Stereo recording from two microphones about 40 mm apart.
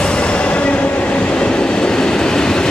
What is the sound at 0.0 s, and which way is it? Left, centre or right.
Train, left.